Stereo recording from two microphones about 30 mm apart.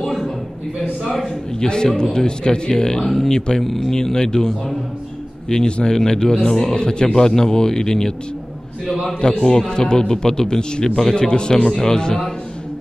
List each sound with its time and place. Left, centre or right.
0.0 s a sound: centre
1.6 s a man's voice: left
5.5 s a man's voice: left
6.8 s a man's voice: left
9.4 s speech: centre
9.7 s a man's voice: left
11.5 s a man's voice: centre